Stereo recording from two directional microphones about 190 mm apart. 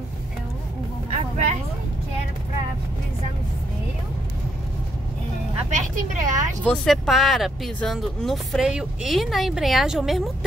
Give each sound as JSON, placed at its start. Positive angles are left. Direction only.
{"t": 5.7, "sound": "a woman's voice", "side_deg": -40}
{"t": 6.6, "sound": "speech", "side_deg": 5}